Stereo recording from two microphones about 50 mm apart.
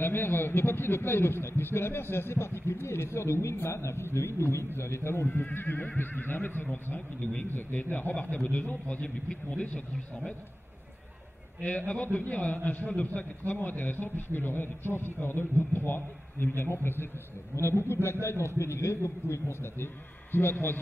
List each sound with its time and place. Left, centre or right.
0.0 s a man's voice: left
5.3 s a man's voice: left
7.4 s a man's voice: left
7.9 s a man's voice: left
11.6 s a man's voice: left
19.6 s a man's voice: left